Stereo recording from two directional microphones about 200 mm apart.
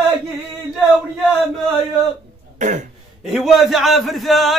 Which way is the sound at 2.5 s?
35° right (ahead or behind).